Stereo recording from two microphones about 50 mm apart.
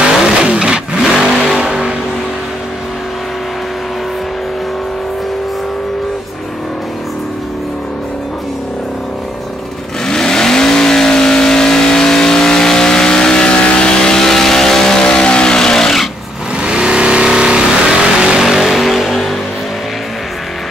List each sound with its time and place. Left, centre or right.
0.0 s vehicle: centre
10.0 s vehicle: centre
16.5 s vehicle: centre